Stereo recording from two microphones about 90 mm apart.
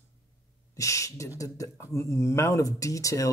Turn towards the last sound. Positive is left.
turn(degrees=35)  # may be behind; listen again after turning